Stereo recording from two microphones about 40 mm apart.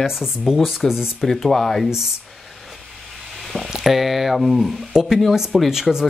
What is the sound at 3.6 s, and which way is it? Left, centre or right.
Speech, centre.